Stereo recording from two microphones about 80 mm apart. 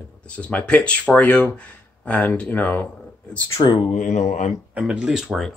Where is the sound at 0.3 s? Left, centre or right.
Centre.